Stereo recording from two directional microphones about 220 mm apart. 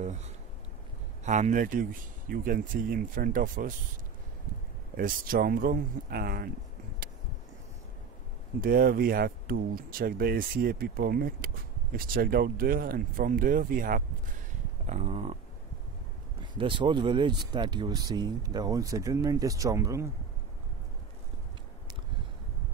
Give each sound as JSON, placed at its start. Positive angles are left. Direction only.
{"t": 1.2, "sound": "speech", "side_deg": -35}
{"t": 4.9, "sound": "speech", "side_deg": -40}
{"t": 8.5, "sound": "speech", "side_deg": -40}
{"t": 16.5, "sound": "speech", "side_deg": -25}